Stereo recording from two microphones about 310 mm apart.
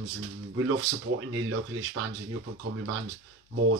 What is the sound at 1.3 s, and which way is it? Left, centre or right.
Speech, right.